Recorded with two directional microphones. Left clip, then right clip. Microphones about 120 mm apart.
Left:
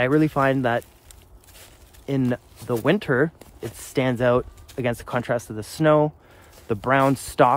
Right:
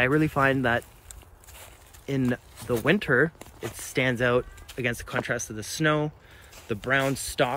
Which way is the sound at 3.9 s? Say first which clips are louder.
Left 3 dB; 50° left (ahead or behind).